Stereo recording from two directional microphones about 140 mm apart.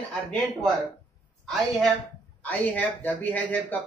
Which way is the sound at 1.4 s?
Centre (ahead or behind).